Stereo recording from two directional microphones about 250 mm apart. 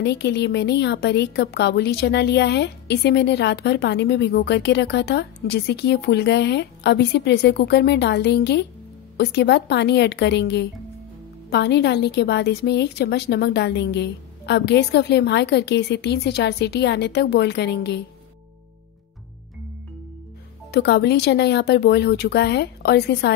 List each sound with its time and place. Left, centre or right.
0.0 s a woman's voice: left
20.7 s a woman's voice: left